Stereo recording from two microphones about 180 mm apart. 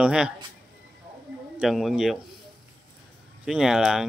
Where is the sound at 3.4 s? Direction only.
5° right (ahead or behind).